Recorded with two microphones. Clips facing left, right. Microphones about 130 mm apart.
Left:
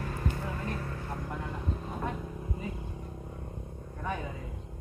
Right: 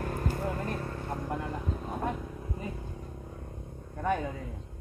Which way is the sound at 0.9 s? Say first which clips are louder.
Right 3 dB; 30° right (ahead or behind).